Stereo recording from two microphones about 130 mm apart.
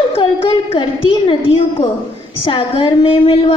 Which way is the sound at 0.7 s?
40° left (ahead or behind).